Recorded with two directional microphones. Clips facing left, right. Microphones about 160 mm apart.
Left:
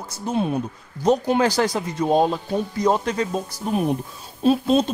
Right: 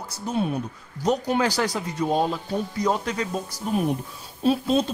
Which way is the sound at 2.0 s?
30° left (ahead or behind).